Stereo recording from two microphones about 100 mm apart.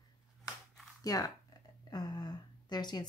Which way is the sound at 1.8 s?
40° left (ahead or behind).